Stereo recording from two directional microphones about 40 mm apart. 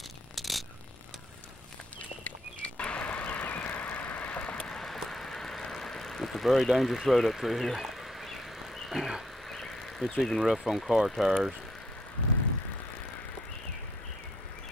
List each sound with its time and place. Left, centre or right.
0.4 s mechanisms: centre
2.2 s a sound: left
3.3 s vehicle: left
4.6 s vehicle: centre
6.8 s speech: centre
8.7 s a sound: centre
10.4 s speech: centre